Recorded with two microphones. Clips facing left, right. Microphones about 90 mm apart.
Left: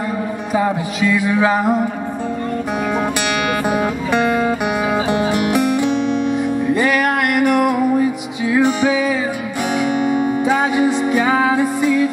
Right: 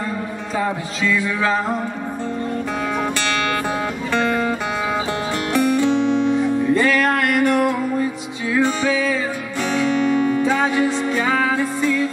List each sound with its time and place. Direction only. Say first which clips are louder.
0.6 s music: left 4 dB; 15° left (ahead or behind)
3.7 s music: left 4 dB; 15° left (ahead or behind)
6.0 s music: even; 20° right (ahead or behind)
6.3 s music: even; 15° left (ahead or behind)